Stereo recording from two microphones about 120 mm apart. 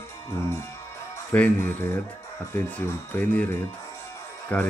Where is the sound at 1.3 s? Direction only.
15° left (ahead or behind).